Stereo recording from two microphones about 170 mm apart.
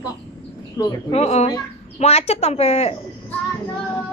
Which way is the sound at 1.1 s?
40° left (ahead or behind).